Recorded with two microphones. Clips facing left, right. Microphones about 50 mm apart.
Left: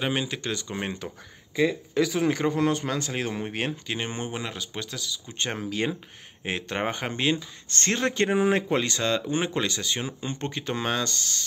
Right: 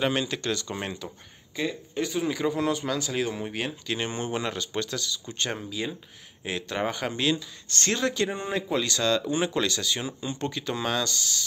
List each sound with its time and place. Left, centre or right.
0.0 s speech: centre
2.0 s a man's voice: left
2.4 s speech: left
3.8 s speech: left
4.3 s speech: centre
5.3 s speech: left
5.6 s speech: left
6.4 s speech: left
8.3 s speech: left
8.7 s speech: left